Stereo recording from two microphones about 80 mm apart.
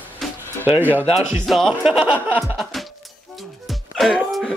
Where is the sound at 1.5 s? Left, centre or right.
Centre.